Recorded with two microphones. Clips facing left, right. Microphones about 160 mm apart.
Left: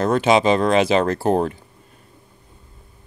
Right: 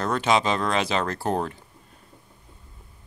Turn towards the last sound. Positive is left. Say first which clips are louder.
# left 7 dB
turn(degrees=25)  # may be behind; listen again after turning